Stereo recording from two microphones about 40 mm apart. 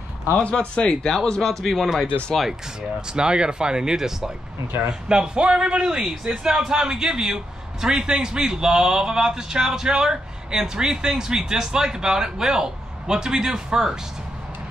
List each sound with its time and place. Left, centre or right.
0.4 s speech: left
0.8 s speech: centre
1.6 s speech: centre
3.1 s speech: right
6.0 s a man's voice: centre
6.4 s a man's voice: centre